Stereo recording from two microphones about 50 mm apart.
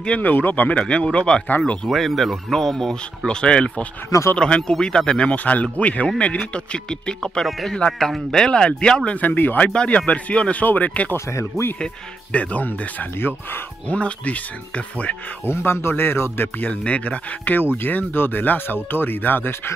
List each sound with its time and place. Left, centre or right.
0.2 s speech: left
0.7 s speech: left
1.9 s speech: centre
3.3 s speech: centre
5.3 s speech: left
9.1 s speech: left
11.1 s speech: left
11.8 s speech: left
13.8 s speech: left
15.4 s speech: left
16.5 s speech: left
17.8 s speech: left